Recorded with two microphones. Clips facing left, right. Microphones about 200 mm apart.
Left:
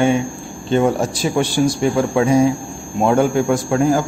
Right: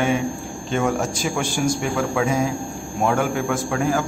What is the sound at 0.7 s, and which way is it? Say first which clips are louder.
A man's voice: left 6 dB; 35° left (ahead or behind).